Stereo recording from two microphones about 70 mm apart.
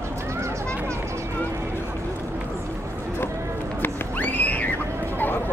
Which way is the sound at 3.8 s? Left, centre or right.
Left.